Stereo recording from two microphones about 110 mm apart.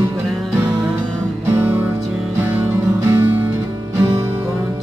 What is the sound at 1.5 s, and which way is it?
Music, 15° right (ahead or behind).